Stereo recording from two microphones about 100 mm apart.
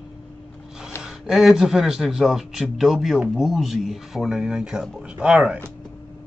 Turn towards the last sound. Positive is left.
turn(degrees=-5)  # may be behind; listen again after turning